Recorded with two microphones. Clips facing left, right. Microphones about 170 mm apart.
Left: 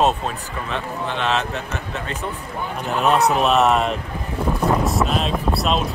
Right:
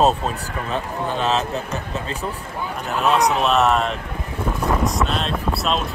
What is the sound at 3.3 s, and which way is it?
Speech, centre (ahead or behind).